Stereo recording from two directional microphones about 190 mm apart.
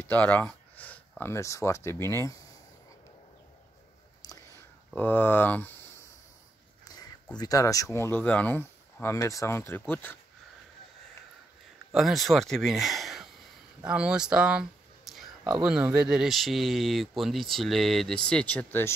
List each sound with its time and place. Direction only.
0.0 s speech: 10° left (ahead or behind)
4.2 s a sound: 20° left (ahead or behind)
4.9 s speech: 10° left (ahead or behind)
7.3 s speech: 20° left (ahead or behind)
11.9 s speech: centre (ahead or behind)